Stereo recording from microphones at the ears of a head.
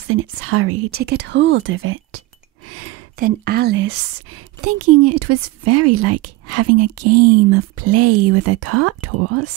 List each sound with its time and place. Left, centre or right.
0.0 s speech: right